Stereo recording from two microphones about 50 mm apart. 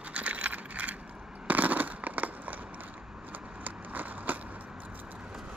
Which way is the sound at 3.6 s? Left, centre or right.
Right.